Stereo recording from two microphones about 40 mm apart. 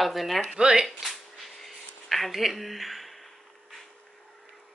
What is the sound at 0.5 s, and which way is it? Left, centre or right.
Speech, centre.